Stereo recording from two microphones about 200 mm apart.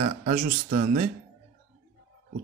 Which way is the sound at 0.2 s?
45° right (ahead or behind).